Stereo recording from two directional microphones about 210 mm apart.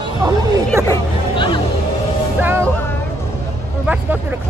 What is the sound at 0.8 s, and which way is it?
Hubbub, 25° left (ahead or behind).